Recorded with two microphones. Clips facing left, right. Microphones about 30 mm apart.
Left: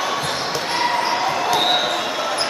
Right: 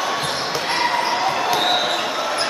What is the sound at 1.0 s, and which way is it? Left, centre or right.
Basketball bounce, centre.